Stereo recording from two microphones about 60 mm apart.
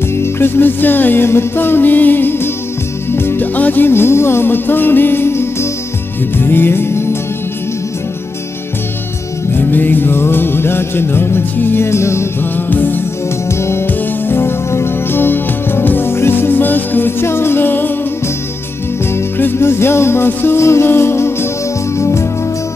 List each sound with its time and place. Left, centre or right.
0.2 s music: left
9.5 s music: left
12.5 s music: left
13.6 s music: left
13.8 s music: left
19.1 s music: left